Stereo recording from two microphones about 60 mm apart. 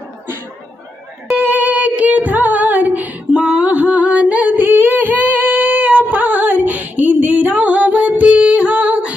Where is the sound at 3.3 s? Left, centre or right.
Centre.